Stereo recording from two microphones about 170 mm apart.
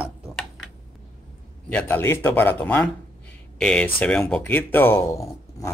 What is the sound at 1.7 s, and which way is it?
Speech, 10° left (ahead or behind).